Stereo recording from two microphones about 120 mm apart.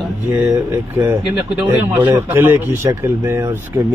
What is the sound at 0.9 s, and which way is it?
Speech, 15° right (ahead or behind).